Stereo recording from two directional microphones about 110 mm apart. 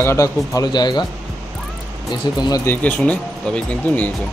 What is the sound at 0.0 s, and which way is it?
Speech, 25° left (ahead or behind).